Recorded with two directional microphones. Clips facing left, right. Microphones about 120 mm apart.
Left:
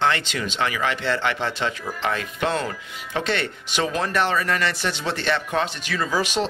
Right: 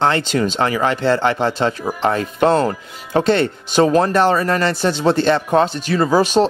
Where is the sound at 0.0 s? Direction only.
35° right (ahead or behind).